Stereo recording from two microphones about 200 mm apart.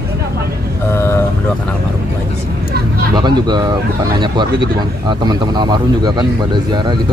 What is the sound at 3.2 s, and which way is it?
Speech, 20° right (ahead or behind).